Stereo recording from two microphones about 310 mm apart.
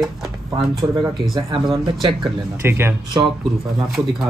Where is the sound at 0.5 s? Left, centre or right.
Centre.